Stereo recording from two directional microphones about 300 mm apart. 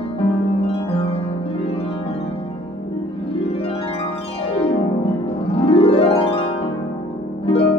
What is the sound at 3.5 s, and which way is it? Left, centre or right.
Music, centre.